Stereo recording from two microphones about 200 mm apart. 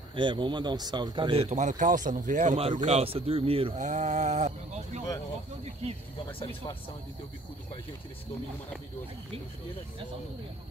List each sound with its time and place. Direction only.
0.1 s speech: 25° right (ahead or behind)
1.5 s a man's voice: 40° right (ahead or behind)
6.2 s speech: 25° left (ahead or behind)